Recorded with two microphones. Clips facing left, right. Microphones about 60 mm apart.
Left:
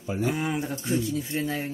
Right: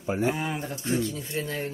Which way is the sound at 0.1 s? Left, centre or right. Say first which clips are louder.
Right 1 dB; right.